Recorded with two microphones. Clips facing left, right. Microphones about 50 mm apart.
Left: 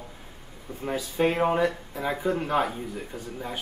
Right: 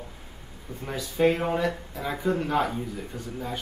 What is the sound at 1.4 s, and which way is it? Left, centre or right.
Speech, centre.